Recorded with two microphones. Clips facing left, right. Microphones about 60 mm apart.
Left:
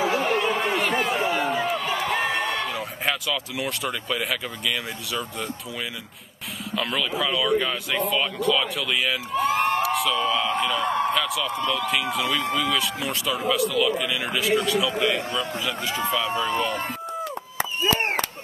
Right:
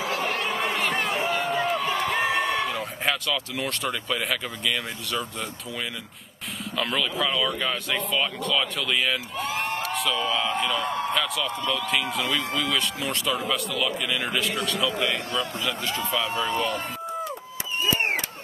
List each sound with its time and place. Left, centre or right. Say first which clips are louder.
0.2 s a sound: left 4 dB; centre
6.7 s speech: left 1 dB; centre
15.0 s a man's voice: left 2 dB; centre
15.6 s speech: left 1 dB; centre
16.3 s speech: left 1 dB; centre